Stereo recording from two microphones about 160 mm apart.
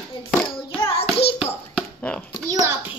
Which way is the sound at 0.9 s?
40° left (ahead or behind).